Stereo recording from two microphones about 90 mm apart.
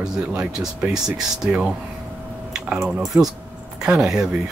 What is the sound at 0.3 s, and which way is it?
Speech, 5° right (ahead or behind).